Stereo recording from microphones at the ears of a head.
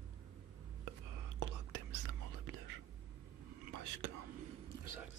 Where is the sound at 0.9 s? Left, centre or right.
Right.